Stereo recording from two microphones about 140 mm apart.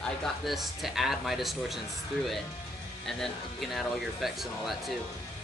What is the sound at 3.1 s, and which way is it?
Speech, centre (ahead or behind).